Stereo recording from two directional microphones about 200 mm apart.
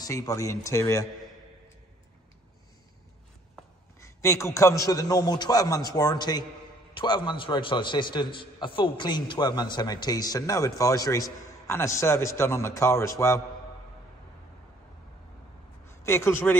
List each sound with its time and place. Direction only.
0.0 s speech: 15° left (ahead or behind)
4.0 s a man's voice: 15° left (ahead or behind)
15.9 s a man's voice: 15° left (ahead or behind)